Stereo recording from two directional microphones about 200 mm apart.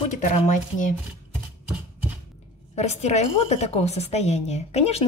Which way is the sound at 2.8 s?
35° left (ahead or behind).